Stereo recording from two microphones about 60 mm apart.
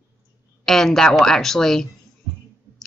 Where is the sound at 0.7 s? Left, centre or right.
Centre.